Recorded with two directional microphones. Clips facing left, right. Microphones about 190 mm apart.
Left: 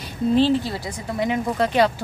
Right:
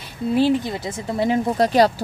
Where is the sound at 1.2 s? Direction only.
35° right (ahead or behind).